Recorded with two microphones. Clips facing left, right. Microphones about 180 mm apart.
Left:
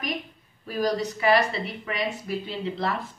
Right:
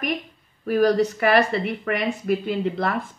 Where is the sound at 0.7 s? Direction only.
60° right (ahead or behind).